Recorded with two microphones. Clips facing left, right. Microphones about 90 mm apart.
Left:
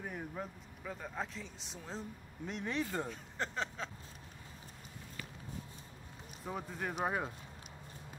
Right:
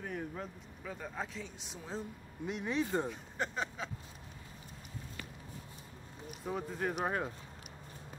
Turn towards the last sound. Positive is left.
turn(degrees=0)  # may be behind; listen again after turning